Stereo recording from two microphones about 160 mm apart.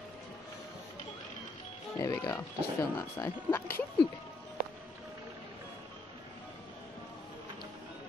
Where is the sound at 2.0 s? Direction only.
20° left (ahead or behind).